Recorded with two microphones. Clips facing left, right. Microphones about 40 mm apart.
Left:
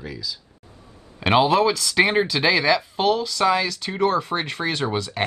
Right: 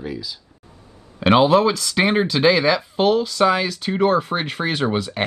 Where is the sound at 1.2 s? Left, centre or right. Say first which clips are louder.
Right 3 dB; centre.